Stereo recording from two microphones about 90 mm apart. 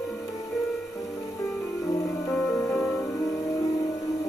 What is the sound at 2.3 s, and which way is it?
Music, 5° left (ahead or behind).